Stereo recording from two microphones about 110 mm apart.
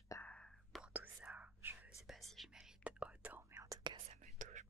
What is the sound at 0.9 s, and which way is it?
Whispering, 15° right (ahead or behind).